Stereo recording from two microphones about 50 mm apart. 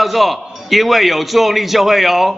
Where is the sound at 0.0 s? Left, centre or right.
Centre.